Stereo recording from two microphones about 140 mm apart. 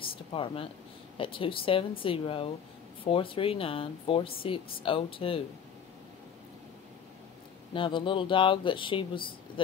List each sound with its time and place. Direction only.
0.0 s a sound: 40° left (ahead or behind)
1.1 s speech: 40° left (ahead or behind)
7.7 s speech: 35° left (ahead or behind)